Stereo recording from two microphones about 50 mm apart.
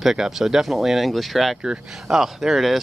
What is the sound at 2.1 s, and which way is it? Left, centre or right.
Speech, centre.